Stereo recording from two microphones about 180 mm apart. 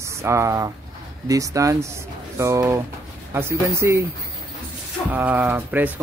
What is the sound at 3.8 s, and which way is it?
Speech, 15° right (ahead or behind).